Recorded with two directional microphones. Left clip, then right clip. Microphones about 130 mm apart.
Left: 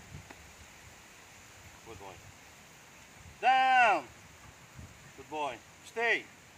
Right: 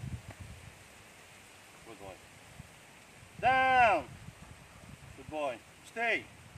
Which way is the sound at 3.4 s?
15° right (ahead or behind).